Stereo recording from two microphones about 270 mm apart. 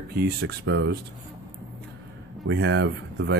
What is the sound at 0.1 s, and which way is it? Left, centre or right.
Speech, right.